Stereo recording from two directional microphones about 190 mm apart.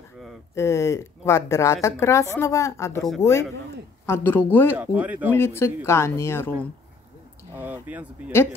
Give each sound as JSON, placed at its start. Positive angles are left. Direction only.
{"t": 0.6, "sound": "speech", "side_deg": 15}
{"t": 4.7, "sound": "speech", "side_deg": -10}
{"t": 5.3, "sound": "speech", "side_deg": 15}
{"t": 7.5, "sound": "speech", "side_deg": -10}